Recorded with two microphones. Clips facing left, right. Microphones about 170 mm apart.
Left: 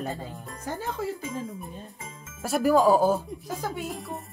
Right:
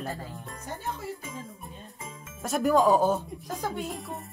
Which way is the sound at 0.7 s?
90° left.